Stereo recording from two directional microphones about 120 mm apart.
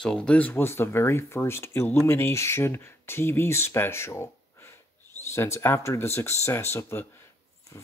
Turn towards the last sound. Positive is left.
turn(degrees=20)  # may be behind; listen again after turning